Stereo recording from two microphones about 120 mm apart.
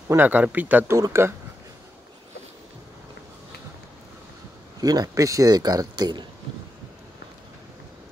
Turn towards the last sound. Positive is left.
turn(degrees=-35)  # may be behind; listen again after turning